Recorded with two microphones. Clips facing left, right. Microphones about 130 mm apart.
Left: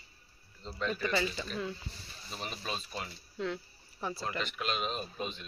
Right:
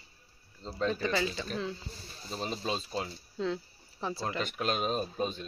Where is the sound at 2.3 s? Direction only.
30° right (ahead or behind).